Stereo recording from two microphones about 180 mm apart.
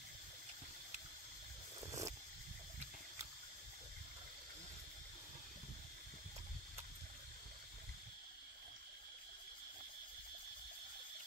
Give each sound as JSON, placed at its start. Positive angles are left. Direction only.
{"t": 1.8, "sound": "vehicle", "side_deg": -20}